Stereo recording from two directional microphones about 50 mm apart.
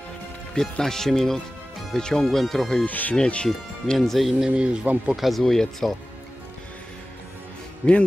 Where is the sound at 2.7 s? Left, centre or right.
Left.